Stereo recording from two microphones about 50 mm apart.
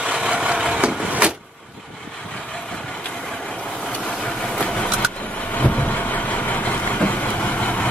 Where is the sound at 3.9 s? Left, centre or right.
Centre.